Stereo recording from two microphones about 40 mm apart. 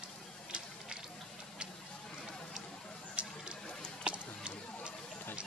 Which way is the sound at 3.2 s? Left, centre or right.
Right.